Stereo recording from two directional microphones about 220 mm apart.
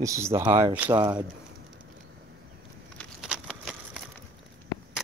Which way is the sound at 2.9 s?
Centre (ahead or behind).